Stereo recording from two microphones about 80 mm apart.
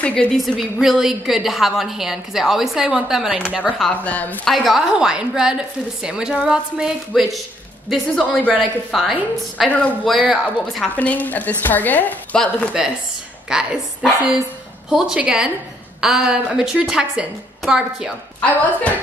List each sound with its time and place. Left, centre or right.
0.0 s a woman's voice: centre
0.6 s a woman's voice: centre
3.9 s a woman's voice: centre
4.5 s a woman's voice: centre
8.2 s speech: centre
8.5 s a woman's voice: centre
9.7 s a woman's voice: centre
10.3 s a woman's voice: centre
11.0 s a woman's voice: left
13.5 s a woman's voice: centre
18.4 s a woman's voice: centre